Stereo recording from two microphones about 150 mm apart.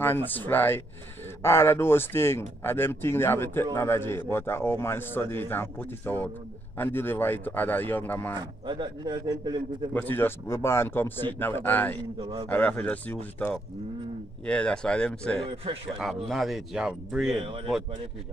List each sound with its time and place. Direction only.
0.0 s a man's voice: 15° left (ahead or behind)
8.4 s speech: 30° right (ahead or behind)
9.9 s a man's voice: 15° left (ahead or behind)
15.4 s speech: 40° right (ahead or behind)
16.3 s speech: centre (ahead or behind)
17.4 s speech: 40° right (ahead or behind)